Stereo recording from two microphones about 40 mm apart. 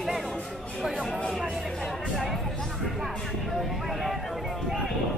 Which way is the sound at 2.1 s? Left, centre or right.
Centre.